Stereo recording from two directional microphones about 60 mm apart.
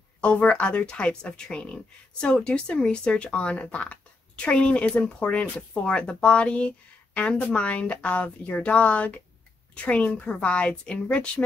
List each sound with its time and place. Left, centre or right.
0.2 s speech: centre